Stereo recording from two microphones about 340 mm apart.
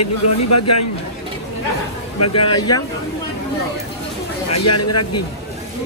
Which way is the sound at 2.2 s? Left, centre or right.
Left.